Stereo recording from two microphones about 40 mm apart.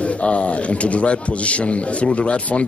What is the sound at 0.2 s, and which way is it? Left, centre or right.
Speech, left.